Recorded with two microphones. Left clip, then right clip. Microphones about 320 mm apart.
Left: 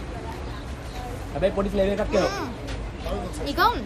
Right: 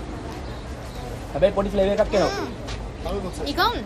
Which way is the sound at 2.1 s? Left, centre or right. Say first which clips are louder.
Right 2 dB; centre.